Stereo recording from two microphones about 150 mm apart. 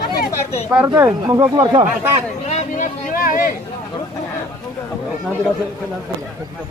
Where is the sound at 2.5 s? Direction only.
65° left (ahead or behind).